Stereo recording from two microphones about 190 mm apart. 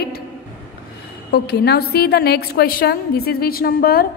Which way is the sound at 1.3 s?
60° left (ahead or behind).